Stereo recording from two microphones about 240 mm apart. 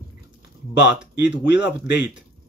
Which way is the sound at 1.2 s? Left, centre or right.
Left.